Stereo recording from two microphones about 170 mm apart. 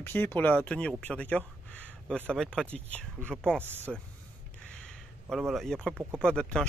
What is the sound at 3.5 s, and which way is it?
Speech, 15° right (ahead or behind).